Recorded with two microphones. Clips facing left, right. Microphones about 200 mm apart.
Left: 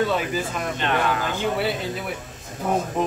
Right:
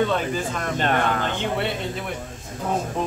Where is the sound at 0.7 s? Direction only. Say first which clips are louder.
Right 2 dB; 45° right (ahead or behind).